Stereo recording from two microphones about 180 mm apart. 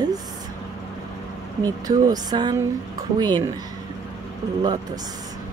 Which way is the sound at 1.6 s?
20° right (ahead or behind).